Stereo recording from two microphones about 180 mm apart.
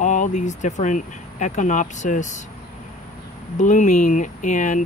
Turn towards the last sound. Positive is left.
turn(degrees=45)  # may be behind; listen again after turning